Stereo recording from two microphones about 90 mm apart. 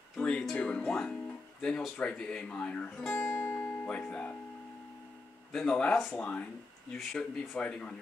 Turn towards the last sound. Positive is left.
turn(degrees=15)  # may be behind; listen again after turning